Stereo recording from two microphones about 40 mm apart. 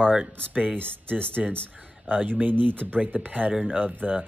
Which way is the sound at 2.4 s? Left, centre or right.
Right.